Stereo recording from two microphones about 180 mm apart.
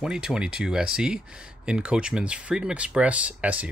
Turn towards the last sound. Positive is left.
turn(degrees=-5)  # may be behind; listen again after turning